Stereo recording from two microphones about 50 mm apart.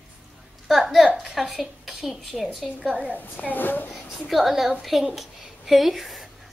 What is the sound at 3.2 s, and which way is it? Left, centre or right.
Speech, left.